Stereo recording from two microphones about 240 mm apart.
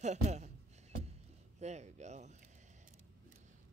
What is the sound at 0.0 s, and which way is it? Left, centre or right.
Speech, right.